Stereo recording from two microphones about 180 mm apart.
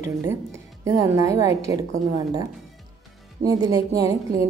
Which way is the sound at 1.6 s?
20° right (ahead or behind).